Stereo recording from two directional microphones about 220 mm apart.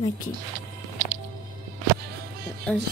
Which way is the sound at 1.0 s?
35° right (ahead or behind).